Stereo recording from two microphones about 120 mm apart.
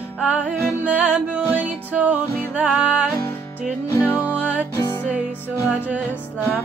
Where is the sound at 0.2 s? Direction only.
10° right (ahead or behind).